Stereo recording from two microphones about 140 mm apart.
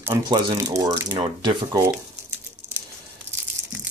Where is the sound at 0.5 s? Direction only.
25° right (ahead or behind).